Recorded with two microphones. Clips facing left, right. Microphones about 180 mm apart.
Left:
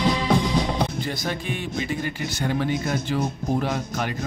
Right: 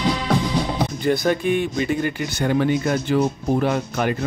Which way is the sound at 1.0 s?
55° right (ahead or behind).